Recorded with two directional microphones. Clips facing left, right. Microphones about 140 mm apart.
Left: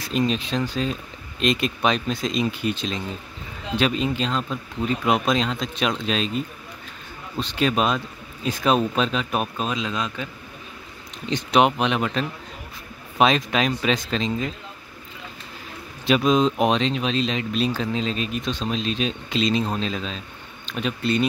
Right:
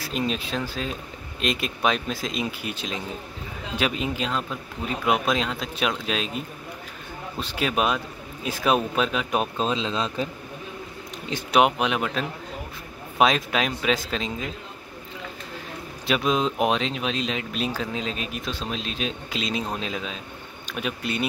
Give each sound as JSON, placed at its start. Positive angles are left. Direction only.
{"t": 0.0, "sound": "speech", "side_deg": -5}
{"t": 11.2, "sound": "speech", "side_deg": -10}
{"t": 16.1, "sound": "speech", "side_deg": -5}